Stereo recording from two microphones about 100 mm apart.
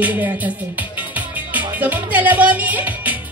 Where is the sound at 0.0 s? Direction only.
15° right (ahead or behind).